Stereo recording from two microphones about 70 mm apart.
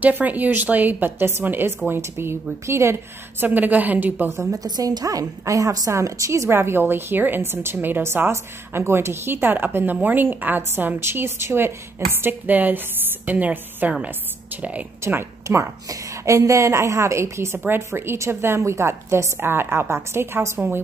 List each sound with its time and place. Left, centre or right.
0.0 s a woman's voice: right
3.4 s a woman's voice: right
4.3 s a woman's voice: right
4.6 s a woman's voice: right
15.0 s speech: right
15.4 s a woman's voice: right